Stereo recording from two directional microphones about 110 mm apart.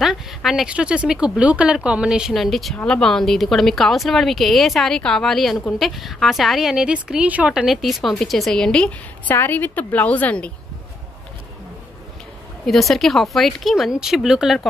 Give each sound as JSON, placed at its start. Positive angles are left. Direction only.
{"t": 0.0, "sound": "a woman's voice", "side_deg": 0}
{"t": 9.3, "sound": "a woman's voice", "side_deg": 20}
{"t": 12.6, "sound": "a woman's voice", "side_deg": 0}